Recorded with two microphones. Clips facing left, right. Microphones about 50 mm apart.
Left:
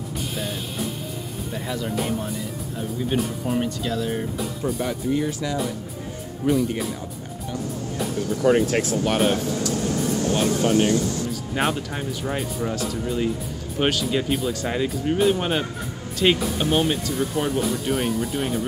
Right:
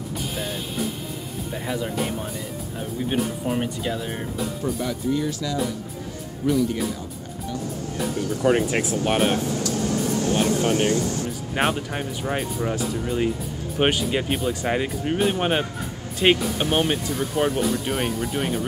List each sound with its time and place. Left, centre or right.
0.3 s music: centre
1.5 s speech: centre
3.1 s speech: centre
4.8 s speech: left
8.2 s speech: right
10.3 s speech: right
11.5 s speech: right
17.6 s speech: centre